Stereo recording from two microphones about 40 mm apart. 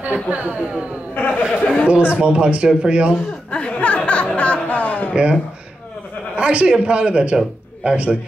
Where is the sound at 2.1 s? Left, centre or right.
Right.